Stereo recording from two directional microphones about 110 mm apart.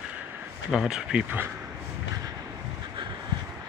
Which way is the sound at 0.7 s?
5° right (ahead or behind).